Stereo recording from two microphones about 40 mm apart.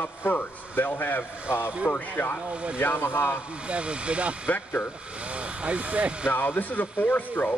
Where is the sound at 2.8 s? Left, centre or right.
Left.